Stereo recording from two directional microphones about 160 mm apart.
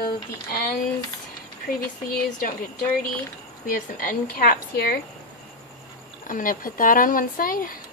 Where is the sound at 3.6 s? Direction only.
60° left (ahead or behind).